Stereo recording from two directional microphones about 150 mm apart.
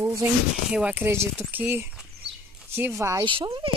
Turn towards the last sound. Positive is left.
turn(degrees=-35)  # may be behind; listen again after turning